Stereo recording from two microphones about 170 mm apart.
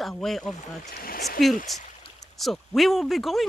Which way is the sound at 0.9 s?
60° left (ahead or behind).